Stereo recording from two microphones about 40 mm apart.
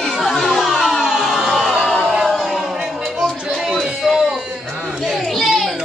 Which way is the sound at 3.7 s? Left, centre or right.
Centre.